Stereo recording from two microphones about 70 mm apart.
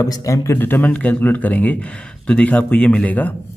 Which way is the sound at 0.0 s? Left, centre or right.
Left.